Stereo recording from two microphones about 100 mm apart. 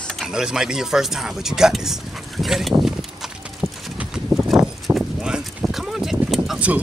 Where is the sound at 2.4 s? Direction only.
Centre (ahead or behind).